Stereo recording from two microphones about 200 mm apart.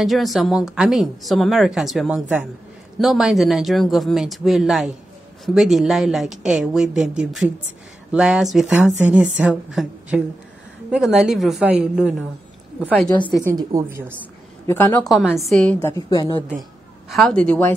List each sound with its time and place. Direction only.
0.0 s a woman's voice: centre (ahead or behind)
13.4 s a woman's voice: 15° right (ahead or behind)
14.7 s a woman's voice: 10° left (ahead or behind)
15.1 s a woman's voice: centre (ahead or behind)
16.1 s a woman's voice: 20° left (ahead or behind)
17.1 s a woman's voice: 5° left (ahead or behind)